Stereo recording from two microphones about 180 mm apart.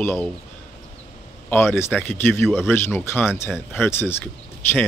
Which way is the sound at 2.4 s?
Centre (ahead or behind).